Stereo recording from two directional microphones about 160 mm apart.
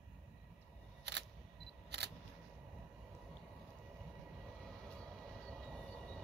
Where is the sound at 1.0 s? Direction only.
90° right.